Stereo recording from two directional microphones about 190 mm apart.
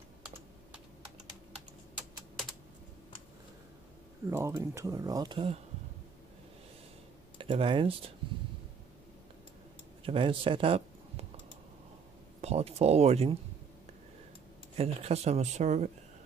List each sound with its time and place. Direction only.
4.3 s speech: 15° right (ahead or behind)
7.3 s speech: 30° right (ahead or behind)
10.0 s speech: 30° right (ahead or behind)
12.4 s speech: 35° right (ahead or behind)
14.8 s speech: 35° right (ahead or behind)